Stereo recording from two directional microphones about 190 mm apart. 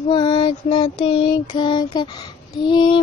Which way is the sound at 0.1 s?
25° left (ahead or behind).